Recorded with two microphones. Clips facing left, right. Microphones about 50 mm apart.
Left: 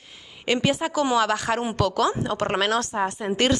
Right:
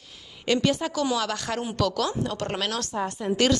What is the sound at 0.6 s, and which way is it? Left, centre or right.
A woman's voice, centre.